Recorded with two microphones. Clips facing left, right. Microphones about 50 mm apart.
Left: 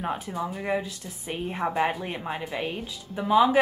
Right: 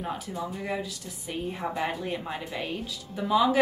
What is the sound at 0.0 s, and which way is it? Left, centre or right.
Speech, centre.